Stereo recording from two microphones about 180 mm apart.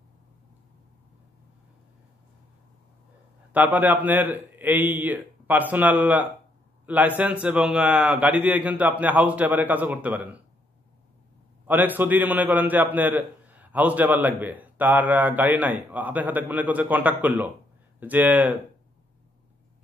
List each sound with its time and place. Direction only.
3.5 s a man's voice: 10° right (ahead or behind)
11.6 s a man's voice: 10° right (ahead or behind)